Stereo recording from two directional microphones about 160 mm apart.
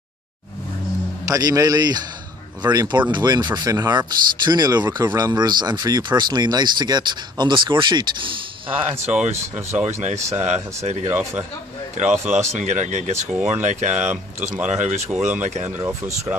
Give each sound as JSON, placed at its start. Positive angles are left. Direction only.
{"t": 1.2, "sound": "speech", "side_deg": -20}
{"t": 9.7, "sound": "speech", "side_deg": -15}
{"t": 10.3, "sound": "speech", "side_deg": -45}
{"t": 11.1, "sound": "speech", "side_deg": -10}
{"t": 12.0, "sound": "speech", "side_deg": -50}
{"t": 14.4, "sound": "speech", "side_deg": -5}
{"t": 14.7, "sound": "speech", "side_deg": -50}
{"t": 15.0, "sound": "speech", "side_deg": -5}
{"t": 15.4, "sound": "speech", "side_deg": -45}